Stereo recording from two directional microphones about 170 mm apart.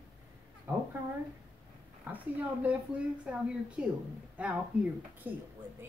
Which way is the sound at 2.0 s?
10° right (ahead or behind).